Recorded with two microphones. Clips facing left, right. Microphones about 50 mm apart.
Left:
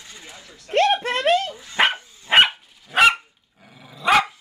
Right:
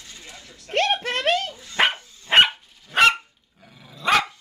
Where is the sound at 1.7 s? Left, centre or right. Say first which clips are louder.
Left 1 dB; centre.